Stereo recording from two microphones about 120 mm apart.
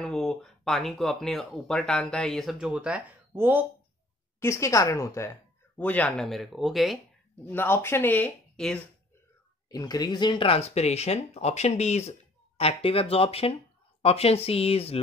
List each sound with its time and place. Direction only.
0.0 s speech: 5° left (ahead or behind); by 3.6 s 15° right (ahead or behind)
4.4 s speech: 25° left (ahead or behind)
5.8 s speech: 10° left (ahead or behind)
7.4 s speech: 15° left (ahead or behind)
8.5 s speech: 5° left (ahead or behind)
9.7 s speech: 30° left (ahead or behind); by 15.0 s 55° left (ahead or behind)